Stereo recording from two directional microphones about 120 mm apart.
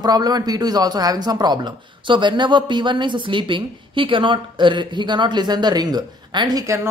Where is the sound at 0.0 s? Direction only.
35° right (ahead or behind).